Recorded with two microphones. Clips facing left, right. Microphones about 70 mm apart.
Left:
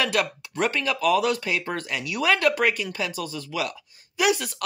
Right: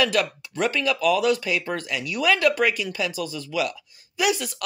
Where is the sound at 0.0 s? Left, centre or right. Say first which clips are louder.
Right 2 dB; left.